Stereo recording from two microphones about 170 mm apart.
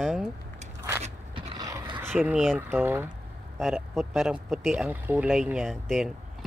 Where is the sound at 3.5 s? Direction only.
Centre (ahead or behind).